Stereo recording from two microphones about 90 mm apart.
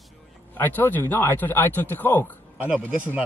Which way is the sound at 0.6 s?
20° left (ahead or behind).